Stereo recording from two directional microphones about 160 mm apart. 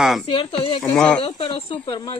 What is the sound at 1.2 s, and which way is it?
Speech, 35° left (ahead or behind).